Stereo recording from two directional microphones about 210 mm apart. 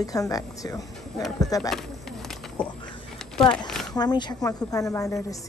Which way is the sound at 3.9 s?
20° left (ahead or behind).